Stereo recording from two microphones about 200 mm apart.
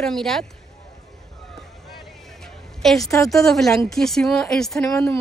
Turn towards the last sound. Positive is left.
turn(degrees=0)  # may be behind; listen again after turning